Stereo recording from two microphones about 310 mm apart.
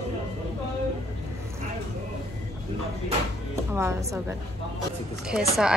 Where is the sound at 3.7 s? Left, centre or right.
Centre.